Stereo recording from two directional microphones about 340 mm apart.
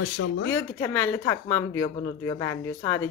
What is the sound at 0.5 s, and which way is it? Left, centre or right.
Speech, centre.